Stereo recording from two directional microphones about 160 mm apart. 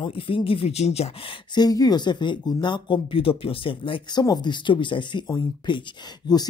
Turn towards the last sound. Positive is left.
turn(degrees=25)  # may be behind; listen again after turning